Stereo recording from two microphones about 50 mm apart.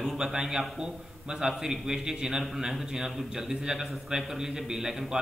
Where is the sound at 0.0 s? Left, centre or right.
Centre.